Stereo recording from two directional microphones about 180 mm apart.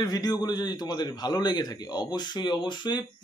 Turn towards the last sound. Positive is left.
turn(degrees=25)  # may be behind; listen again after turning